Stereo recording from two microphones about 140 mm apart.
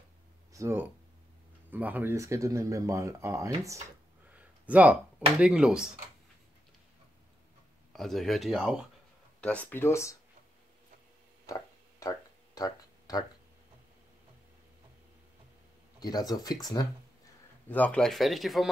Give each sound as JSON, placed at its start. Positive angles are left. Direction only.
{"t": 0.5, "sound": "speech", "side_deg": -20}
{"t": 4.4, "sound": "a sound", "side_deg": -10}
{"t": 5.4, "sound": "speech", "side_deg": -5}
{"t": 7.9, "sound": "speech", "side_deg": 0}
{"t": 9.4, "sound": "speech", "side_deg": 10}
{"t": 11.4, "sound": "a sound", "side_deg": 25}
{"t": 16.0, "sound": "speech", "side_deg": 25}
{"t": 17.6, "sound": "speech", "side_deg": 10}